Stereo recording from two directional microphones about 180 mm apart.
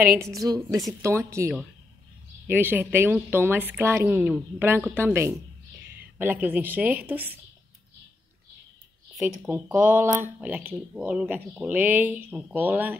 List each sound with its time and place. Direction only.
0.4 s speech: 20° right (ahead or behind)
9.2 s speech: 10° right (ahead or behind)